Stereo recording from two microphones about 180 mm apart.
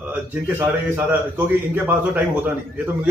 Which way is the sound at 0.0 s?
10° right (ahead or behind).